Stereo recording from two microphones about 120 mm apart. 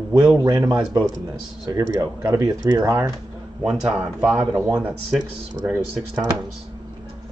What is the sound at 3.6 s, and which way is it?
Speech, 5° right (ahead or behind).